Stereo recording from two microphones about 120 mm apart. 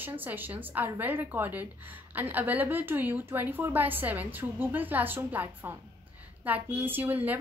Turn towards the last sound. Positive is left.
turn(degrees=-15)  # may be behind; listen again after turning